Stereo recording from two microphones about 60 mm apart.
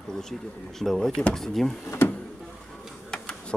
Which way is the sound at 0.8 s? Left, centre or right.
Centre.